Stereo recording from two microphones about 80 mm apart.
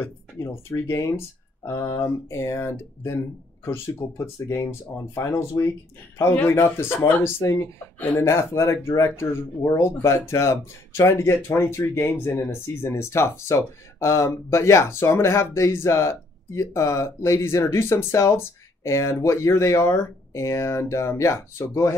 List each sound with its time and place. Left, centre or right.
0.0 s a man's voice: left